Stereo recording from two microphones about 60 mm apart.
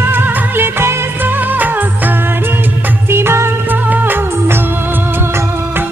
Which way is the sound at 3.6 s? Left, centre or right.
Right.